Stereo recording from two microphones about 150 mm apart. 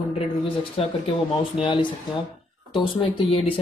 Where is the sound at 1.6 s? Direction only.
35° left (ahead or behind).